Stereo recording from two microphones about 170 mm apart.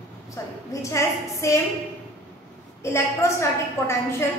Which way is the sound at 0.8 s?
20° left (ahead or behind).